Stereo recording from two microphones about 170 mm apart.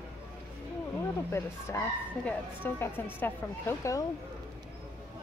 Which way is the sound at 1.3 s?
15° left (ahead or behind).